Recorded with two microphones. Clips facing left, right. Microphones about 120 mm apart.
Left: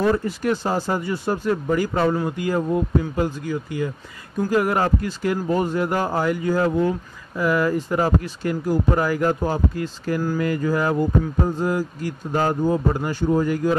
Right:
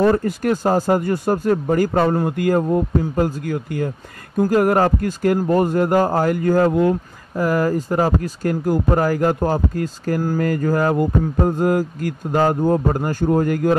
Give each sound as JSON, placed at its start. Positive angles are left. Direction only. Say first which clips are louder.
{"t": 0.0, "sound": "speech", "louder": "right 4 dB", "side_deg": -50}